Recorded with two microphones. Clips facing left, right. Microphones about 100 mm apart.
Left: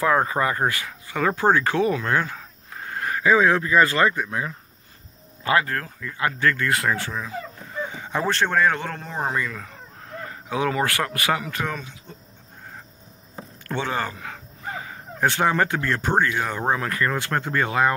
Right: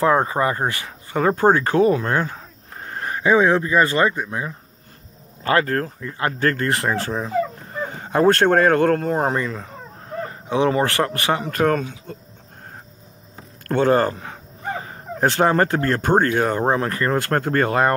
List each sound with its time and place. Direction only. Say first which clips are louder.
0.0 s speech: right 3 dB; 30° right (ahead or behind)
1.0 s speech: right 4 dB; 40° right (ahead or behind); by 4.5 s 20° right (ahead or behind)
5.4 s speech: right 3 dB; 40° right (ahead or behind)
11.5 s speech: right 10 dB; 50° right (ahead or behind)
13.7 s speech: right 10 dB; 45° right (ahead or behind)
14.2 s speech: right 4 dB; 30° right (ahead or behind); by 16.6 s 45° right (ahead or behind)
16.6 s speech: right 3 dB; 35° right (ahead or behind)
17.2 s speech: right 5 dB; 50° right (ahead or behind)